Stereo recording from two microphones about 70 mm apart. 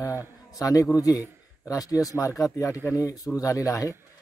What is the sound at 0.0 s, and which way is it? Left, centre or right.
A man's voice, left.